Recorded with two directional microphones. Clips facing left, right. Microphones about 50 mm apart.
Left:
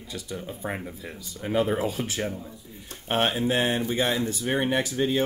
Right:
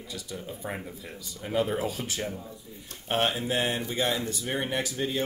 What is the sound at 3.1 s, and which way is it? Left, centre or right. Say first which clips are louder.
Speech: left 3 dB; left.